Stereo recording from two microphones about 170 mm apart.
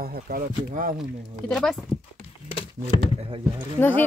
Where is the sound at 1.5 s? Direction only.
5° left (ahead or behind).